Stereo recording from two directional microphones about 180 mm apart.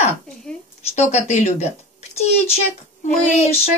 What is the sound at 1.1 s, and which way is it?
Speech, 35° left (ahead or behind).